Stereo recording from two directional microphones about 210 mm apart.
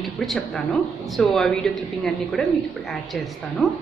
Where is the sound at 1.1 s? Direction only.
5° left (ahead or behind).